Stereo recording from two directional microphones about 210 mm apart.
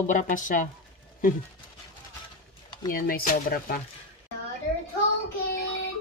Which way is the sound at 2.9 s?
45° left (ahead or behind).